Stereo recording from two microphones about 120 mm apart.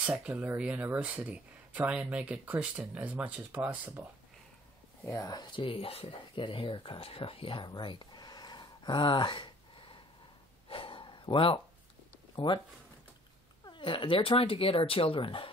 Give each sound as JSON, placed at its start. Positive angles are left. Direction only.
{"t": 0.0, "sound": "speech", "side_deg": -10}
{"t": 5.0, "sound": "speech", "side_deg": 25}
{"t": 10.7, "sound": "a sound", "side_deg": 45}
{"t": 12.4, "sound": "speech", "side_deg": 40}
{"t": 13.7, "sound": "speech", "side_deg": 45}